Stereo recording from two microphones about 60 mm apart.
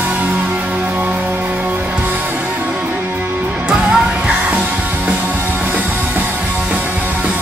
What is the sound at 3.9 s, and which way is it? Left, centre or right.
Music, centre.